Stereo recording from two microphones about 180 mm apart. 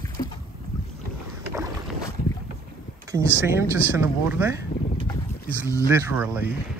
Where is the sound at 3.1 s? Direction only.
15° right (ahead or behind).